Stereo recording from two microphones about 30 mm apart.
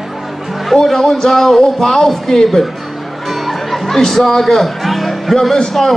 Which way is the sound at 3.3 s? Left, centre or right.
Centre.